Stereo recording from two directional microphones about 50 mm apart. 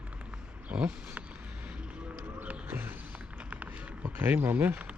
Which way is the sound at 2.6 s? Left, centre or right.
Right.